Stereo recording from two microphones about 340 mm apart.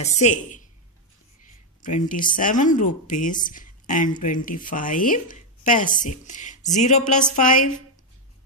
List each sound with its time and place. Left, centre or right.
0.0 s speech: left
1.8 s speech: left